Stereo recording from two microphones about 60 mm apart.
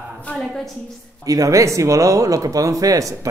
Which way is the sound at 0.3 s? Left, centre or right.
Left.